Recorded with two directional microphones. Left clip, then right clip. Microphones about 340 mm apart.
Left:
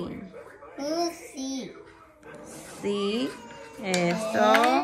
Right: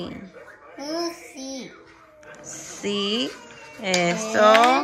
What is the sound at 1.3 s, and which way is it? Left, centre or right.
Babbling, centre.